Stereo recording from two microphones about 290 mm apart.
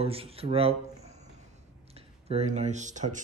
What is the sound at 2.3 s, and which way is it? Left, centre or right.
Speech, right.